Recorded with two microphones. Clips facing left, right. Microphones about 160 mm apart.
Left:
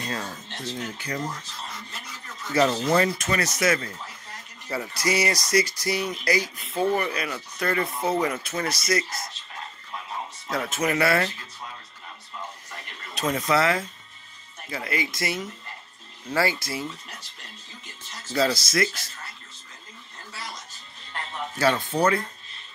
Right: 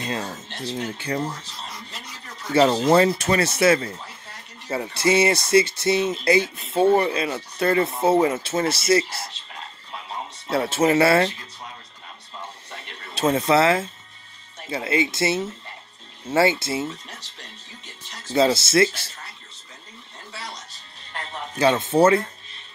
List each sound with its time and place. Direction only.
0.0 s a sound: 20° right (ahead or behind)
0.7 s speech: 30° right (ahead or behind)
2.5 s speech: 30° right (ahead or behind)
10.5 s speech: 30° right (ahead or behind)
12.7 s a sound: 25° right (ahead or behind)
14.7 s speech: 25° right (ahead or behind)
18.3 s speech: 25° right (ahead or behind)
21.5 s speech: 20° right (ahead or behind)